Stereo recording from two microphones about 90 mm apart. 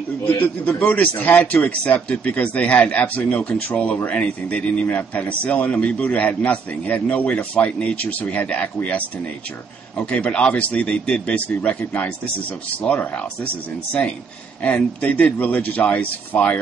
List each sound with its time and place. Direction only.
0.4 s a man's voice: 20° left (ahead or behind)
10.1 s a man's voice: 15° left (ahead or behind)
14.6 s a man's voice: 15° left (ahead or behind)